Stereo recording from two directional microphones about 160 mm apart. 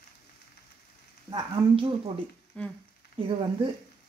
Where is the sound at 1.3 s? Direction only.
35° right (ahead or behind).